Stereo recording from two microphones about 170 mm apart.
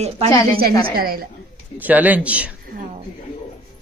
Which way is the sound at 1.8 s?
10° right (ahead or behind).